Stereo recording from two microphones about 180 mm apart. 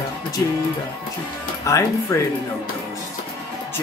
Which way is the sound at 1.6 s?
20° left (ahead or behind).